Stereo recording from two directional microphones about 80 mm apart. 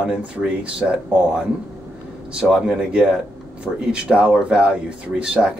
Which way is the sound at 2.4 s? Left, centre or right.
Centre.